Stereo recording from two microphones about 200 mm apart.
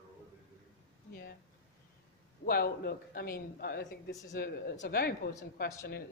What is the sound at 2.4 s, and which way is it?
Speech, 50° left (ahead or behind).